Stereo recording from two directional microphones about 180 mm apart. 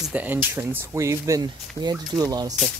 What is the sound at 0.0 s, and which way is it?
Speech, 10° right (ahead or behind).